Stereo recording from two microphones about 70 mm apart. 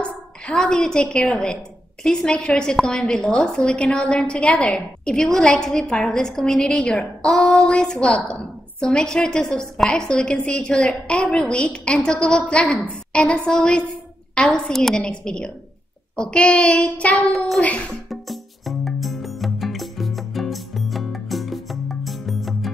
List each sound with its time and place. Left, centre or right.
0.0 s a woman's voice: centre
18.1 s music: centre